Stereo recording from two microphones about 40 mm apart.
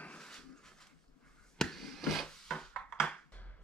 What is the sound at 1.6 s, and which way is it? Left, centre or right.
Wood, centre.